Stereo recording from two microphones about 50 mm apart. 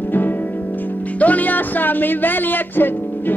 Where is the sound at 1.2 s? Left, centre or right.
Left.